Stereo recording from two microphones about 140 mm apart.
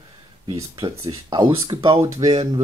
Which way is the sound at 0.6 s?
25° right (ahead or behind).